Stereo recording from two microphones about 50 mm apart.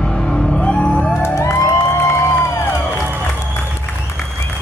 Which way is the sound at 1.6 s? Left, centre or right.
Left.